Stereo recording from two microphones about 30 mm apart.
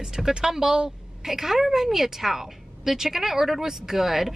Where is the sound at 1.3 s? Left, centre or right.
Centre.